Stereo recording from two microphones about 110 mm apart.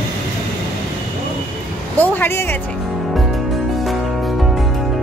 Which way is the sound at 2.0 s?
20° left (ahead or behind).